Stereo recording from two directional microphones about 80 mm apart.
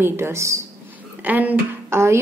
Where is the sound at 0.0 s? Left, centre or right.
Right.